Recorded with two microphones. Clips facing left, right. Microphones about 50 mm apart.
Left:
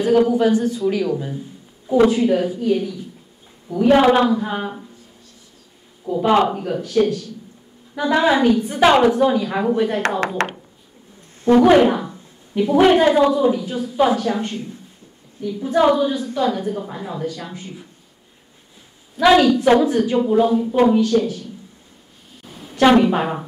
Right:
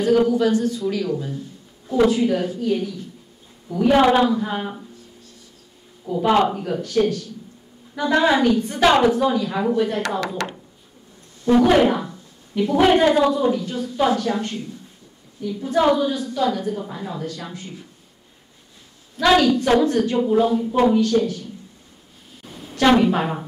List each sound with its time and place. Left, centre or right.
0.0 s a woman's voice: centre
6.0 s a woman's voice: centre
10.2 s speech: left
11.5 s a woman's voice: centre
19.1 s a woman's voice: centre
22.4 s a sound: centre